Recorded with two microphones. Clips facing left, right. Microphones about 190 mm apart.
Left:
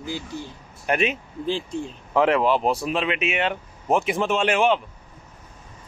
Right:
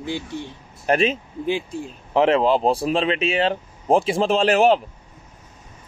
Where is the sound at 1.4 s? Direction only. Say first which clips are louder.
Right 2 dB; 10° right (ahead or behind).